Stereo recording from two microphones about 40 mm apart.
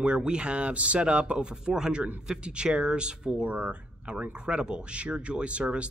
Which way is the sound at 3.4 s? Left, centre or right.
Right.